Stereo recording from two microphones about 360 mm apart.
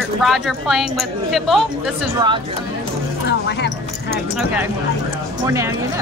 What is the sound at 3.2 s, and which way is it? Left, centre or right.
Music, left.